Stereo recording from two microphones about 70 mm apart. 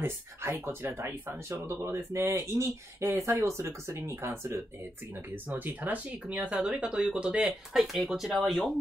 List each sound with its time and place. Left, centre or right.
0.0 s speech: right
5.5 s speech: right
7.7 s speech: centre